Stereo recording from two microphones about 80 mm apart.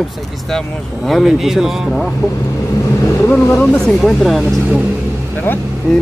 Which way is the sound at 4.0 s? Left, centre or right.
Centre.